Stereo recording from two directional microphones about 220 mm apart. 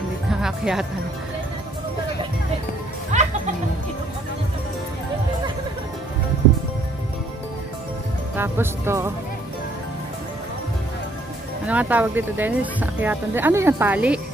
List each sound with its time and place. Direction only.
0.3 s speech: centre (ahead or behind)
3.1 s music: 30° right (ahead or behind)
8.4 s speech: 10° right (ahead or behind)
11.6 s speech: 5° right (ahead or behind)